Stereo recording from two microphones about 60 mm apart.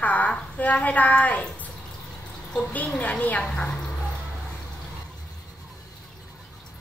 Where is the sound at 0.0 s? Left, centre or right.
Left.